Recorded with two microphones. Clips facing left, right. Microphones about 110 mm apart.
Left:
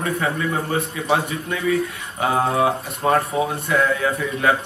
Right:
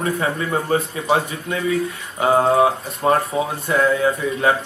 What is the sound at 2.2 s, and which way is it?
A man's voice, 30° right (ahead or behind).